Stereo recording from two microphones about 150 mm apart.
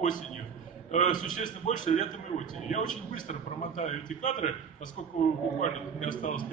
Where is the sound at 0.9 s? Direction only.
55° left (ahead or behind).